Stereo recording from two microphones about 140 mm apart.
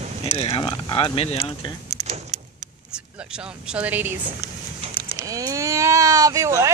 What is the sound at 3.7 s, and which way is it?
Speech, 10° right (ahead or behind).